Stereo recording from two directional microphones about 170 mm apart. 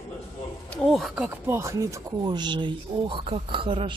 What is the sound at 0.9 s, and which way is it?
Speech, centre (ahead or behind).